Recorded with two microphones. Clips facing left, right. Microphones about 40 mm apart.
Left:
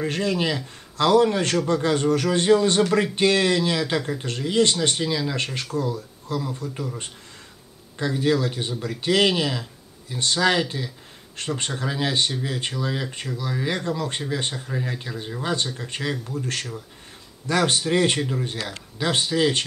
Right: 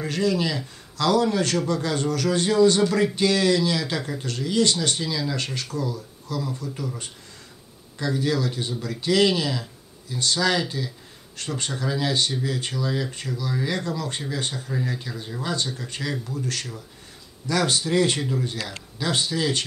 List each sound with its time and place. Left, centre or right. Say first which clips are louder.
0.0 s speech: even; left
8.0 s speech: left 2 dB; left
14.7 s speech: even; centre